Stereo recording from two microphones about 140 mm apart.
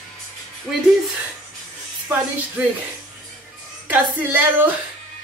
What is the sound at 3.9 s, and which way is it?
Speech, 15° right (ahead or behind).